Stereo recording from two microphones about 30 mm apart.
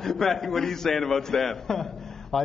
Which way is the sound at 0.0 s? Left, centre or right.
Centre.